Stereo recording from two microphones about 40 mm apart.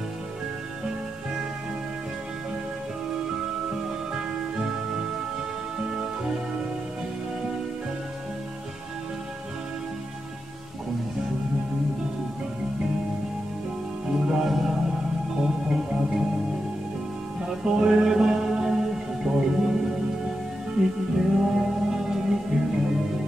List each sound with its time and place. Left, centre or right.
3.7 s music: centre
14.0 s music: centre
14.4 s music: centre
17.5 s music: centre